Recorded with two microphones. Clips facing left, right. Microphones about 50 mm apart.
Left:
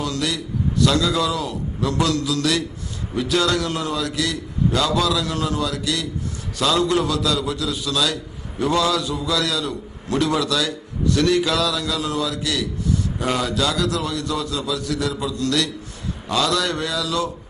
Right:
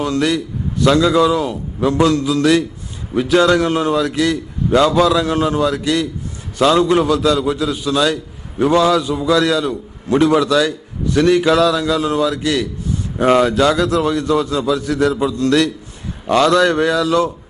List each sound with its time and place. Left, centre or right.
0.0 s a man's voice: right